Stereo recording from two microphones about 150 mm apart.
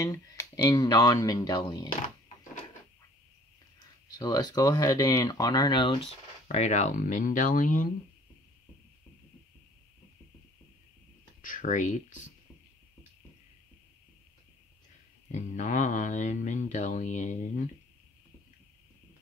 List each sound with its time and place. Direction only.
0.0 s speech: 20° left (ahead or behind)
4.2 s speech: 25° left (ahead or behind); by 7.9 s 60° left (ahead or behind)
11.4 s speech: 60° left (ahead or behind)
15.3 s speech: 55° left (ahead or behind)